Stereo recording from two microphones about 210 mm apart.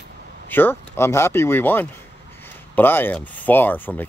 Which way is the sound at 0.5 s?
10° left (ahead or behind).